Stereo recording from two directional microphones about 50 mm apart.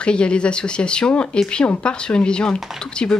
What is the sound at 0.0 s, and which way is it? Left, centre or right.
Speech, left.